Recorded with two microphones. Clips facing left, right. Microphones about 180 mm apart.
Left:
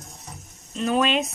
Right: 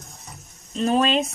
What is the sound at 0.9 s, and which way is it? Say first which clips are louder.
Speech: right 2 dB; 35° right (ahead or behind).